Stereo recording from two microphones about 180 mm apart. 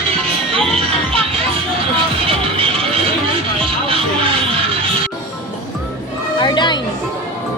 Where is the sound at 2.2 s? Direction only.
30° right (ahead or behind).